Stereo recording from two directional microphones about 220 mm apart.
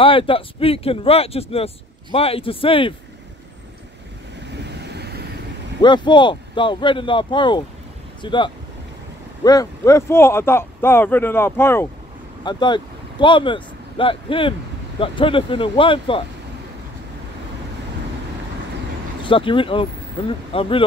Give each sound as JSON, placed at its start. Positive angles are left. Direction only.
{"t": 0.0, "sound": "speech", "side_deg": 25}
{"t": 4.6, "sound": "vehicle", "side_deg": -50}
{"t": 5.8, "sound": "speech", "side_deg": 20}
{"t": 19.2, "sound": "speech", "side_deg": 25}